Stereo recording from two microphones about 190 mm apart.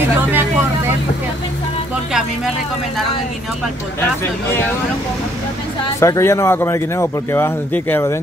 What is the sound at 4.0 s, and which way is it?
Speech, 10° left (ahead or behind).